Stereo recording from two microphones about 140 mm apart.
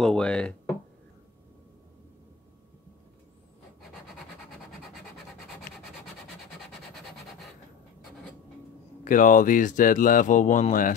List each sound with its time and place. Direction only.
0.0 s speech: 5° left (ahead or behind)
9.0 s speech: 70° left (ahead or behind)